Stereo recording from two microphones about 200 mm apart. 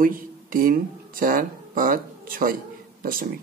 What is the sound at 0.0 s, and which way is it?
Speech, 45° right (ahead or behind).